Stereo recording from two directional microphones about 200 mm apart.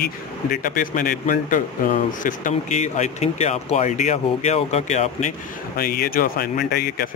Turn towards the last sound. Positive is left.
turn(degrees=50)  # may be behind; listen again after turning